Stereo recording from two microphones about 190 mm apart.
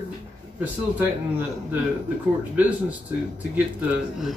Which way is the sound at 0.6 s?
10° right (ahead or behind).